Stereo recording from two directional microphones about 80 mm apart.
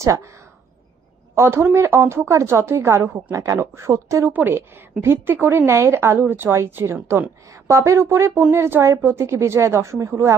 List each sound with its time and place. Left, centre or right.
0.0 s a woman's voice: right
1.3 s a woman's voice: right
4.3 s a woman's voice: right